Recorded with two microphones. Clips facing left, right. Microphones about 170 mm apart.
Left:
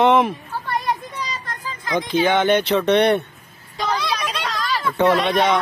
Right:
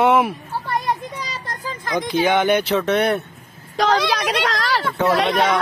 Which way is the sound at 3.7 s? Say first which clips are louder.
Right 5 dB; 90° right.